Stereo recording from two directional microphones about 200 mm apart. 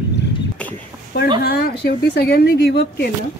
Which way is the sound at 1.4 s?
50° left (ahead or behind).